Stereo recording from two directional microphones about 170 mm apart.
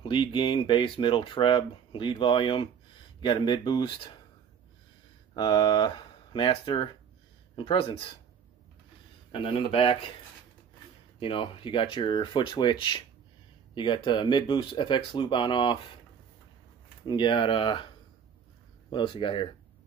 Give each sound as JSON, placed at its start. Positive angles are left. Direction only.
{"t": 0.0, "sound": "speech", "side_deg": 30}
{"t": 5.3, "sound": "speech", "side_deg": 25}
{"t": 9.3, "sound": "speech", "side_deg": 30}
{"t": 11.1, "sound": "speech", "side_deg": 30}
{"t": 17.0, "sound": "speech", "side_deg": 30}
{"t": 18.9, "sound": "speech", "side_deg": 30}